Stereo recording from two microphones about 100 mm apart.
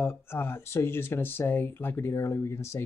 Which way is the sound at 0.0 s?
25° left (ahead or behind).